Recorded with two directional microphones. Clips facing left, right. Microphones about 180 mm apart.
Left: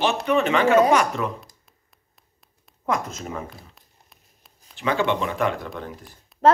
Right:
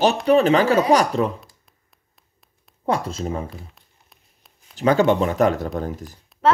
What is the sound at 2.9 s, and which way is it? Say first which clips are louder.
Speech: right 3 dB; 30° right (ahead or behind).